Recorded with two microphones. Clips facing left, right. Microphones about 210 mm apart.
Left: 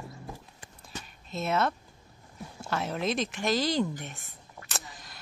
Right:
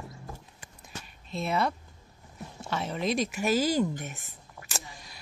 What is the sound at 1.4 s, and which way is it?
Speech, centre (ahead or behind).